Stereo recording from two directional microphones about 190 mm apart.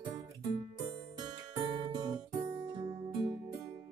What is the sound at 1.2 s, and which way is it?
Music, 25° right (ahead or behind).